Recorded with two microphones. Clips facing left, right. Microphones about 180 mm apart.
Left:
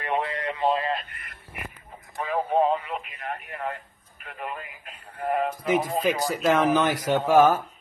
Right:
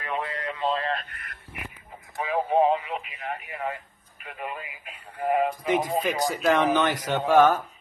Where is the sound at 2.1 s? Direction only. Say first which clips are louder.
Right 1 dB; 5° right (ahead or behind).